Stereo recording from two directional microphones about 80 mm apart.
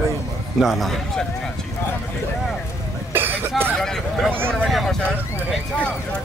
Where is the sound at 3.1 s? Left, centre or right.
Right.